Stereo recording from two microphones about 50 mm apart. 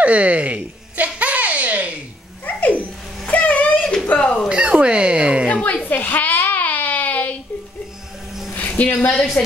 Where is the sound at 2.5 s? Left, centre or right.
Left.